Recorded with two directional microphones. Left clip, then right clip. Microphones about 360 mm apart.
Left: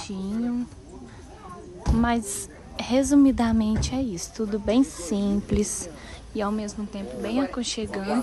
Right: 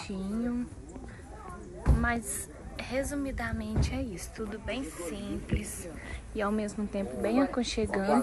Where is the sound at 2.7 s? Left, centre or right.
Centre.